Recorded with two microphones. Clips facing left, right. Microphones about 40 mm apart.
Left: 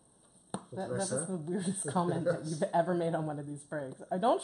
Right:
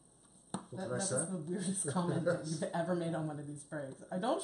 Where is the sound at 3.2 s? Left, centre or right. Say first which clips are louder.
Left 4 dB; centre.